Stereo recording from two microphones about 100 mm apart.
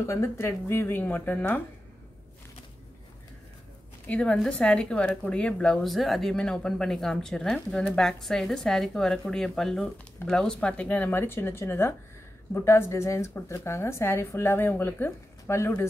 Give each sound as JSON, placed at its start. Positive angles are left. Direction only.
{"t": 0.0, "sound": "a woman's voice", "side_deg": 30}
{"t": 4.1, "sound": "a woman's voice", "side_deg": 10}